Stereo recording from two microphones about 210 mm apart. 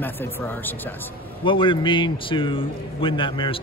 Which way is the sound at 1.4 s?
25° left (ahead or behind).